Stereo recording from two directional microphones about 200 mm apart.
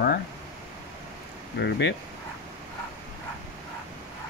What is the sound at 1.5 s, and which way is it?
Speech, 60° left (ahead or behind).